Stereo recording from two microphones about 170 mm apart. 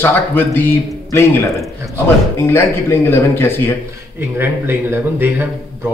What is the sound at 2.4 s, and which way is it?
Speech, 15° left (ahead or behind).